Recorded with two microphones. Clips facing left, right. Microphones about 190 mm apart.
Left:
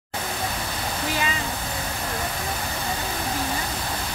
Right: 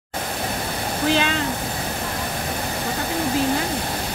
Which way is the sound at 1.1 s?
75° right (ahead or behind).